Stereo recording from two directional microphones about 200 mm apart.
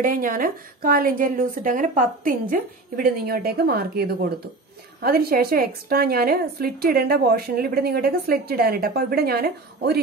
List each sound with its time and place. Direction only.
0.0 s a woman's voice: 45° right (ahead or behind)